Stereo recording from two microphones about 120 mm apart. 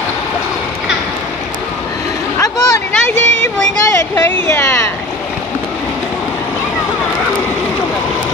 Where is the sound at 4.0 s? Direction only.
20° left (ahead or behind).